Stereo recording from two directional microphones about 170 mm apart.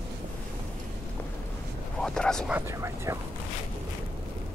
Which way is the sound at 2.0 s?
5° left (ahead or behind).